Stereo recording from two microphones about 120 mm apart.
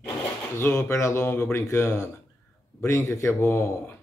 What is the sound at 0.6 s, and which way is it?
Speech, 20° left (ahead or behind).